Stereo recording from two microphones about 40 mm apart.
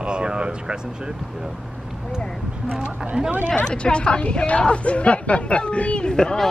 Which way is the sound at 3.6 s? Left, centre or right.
Left.